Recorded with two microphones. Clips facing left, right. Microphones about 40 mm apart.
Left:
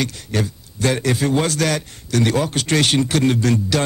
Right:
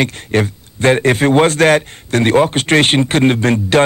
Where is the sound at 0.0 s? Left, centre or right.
Right.